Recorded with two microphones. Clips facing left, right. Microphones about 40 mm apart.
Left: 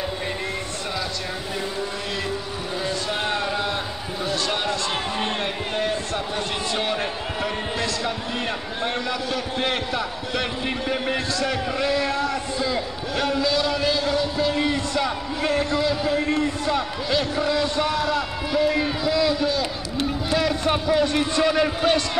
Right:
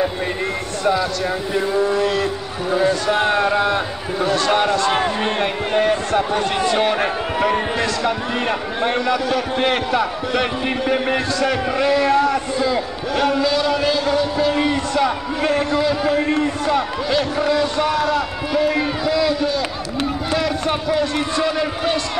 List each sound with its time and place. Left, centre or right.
2.7 s a man's voice: right
11.4 s a man's voice: right
16.6 s a man's voice: centre